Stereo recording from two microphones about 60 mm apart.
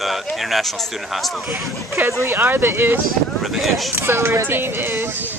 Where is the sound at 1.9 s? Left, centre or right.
Right.